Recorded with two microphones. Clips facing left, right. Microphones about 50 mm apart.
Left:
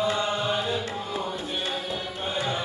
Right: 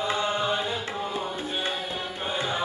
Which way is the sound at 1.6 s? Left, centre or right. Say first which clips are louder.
Right 1 dB; right.